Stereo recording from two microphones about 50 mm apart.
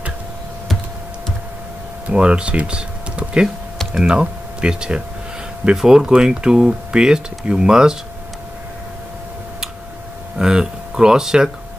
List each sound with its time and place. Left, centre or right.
2.0 s speech: right
10.3 s speech: centre